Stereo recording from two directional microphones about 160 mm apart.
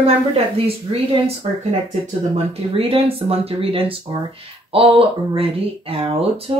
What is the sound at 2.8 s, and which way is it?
Speech, 35° right (ahead or behind).